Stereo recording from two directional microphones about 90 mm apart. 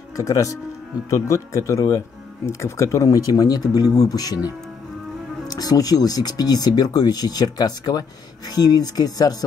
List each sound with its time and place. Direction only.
0.1 s speech: 40° left (ahead or behind)
5.5 s speech: 45° left (ahead or behind)